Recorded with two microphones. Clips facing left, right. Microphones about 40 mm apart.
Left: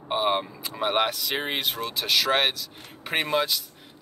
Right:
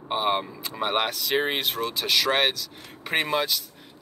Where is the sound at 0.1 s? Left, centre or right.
Centre.